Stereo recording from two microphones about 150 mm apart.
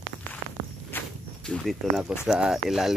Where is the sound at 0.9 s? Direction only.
15° left (ahead or behind).